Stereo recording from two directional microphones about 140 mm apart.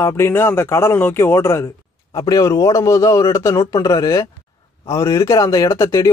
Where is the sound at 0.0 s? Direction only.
20° left (ahead or behind).